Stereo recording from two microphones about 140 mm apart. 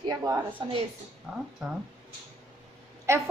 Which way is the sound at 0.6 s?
40° right (ahead or behind).